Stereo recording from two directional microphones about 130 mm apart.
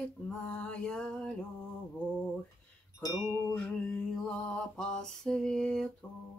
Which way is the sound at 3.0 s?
30° left (ahead or behind).